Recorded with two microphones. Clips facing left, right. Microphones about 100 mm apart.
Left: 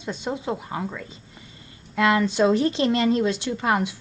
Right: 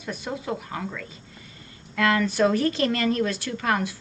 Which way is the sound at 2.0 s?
20° left (ahead or behind).